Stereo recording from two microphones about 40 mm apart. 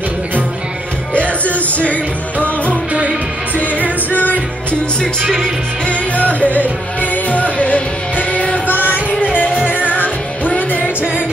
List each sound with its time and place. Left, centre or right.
1.1 s music: left
5.9 s music: left
8.6 s music: left